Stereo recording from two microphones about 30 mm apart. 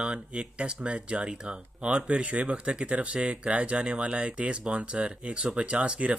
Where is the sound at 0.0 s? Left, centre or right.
Right.